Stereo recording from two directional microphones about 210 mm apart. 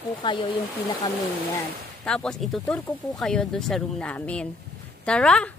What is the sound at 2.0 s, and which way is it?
Speech, 5° left (ahead or behind).